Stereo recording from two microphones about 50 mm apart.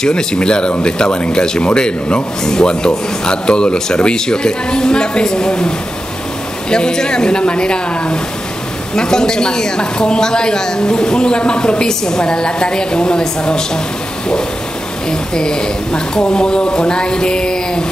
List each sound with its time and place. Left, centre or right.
0.0 s speech: centre
6.7 s speech: centre
15.0 s speech: centre